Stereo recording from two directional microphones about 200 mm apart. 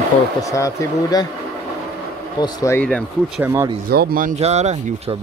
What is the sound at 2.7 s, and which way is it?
Speech, 5° left (ahead or behind).